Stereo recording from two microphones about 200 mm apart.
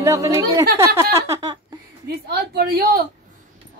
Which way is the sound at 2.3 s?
50° right (ahead or behind).